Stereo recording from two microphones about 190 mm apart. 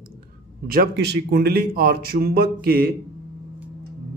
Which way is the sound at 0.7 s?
55° right (ahead or behind).